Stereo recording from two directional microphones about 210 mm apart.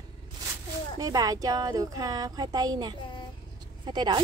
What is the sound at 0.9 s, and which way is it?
Speech, 15° right (ahead or behind).